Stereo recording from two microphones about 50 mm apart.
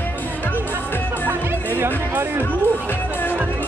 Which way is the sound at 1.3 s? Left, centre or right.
Right.